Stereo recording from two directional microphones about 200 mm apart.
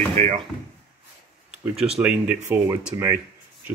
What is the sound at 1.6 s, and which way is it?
Speech, 5° right (ahead or behind).